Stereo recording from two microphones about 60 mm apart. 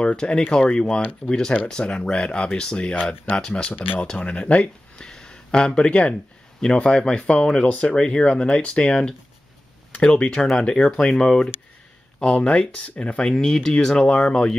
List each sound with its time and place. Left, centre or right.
0.0 s speech: centre